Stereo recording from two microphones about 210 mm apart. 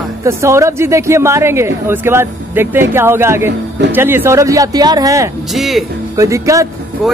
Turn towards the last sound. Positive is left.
turn(degrees=-15)  # may be behind; listen again after turning